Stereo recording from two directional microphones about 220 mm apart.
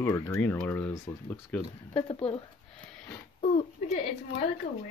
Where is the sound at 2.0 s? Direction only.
25° left (ahead or behind).